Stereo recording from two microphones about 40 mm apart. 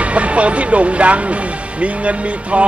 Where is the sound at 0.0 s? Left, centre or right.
Right.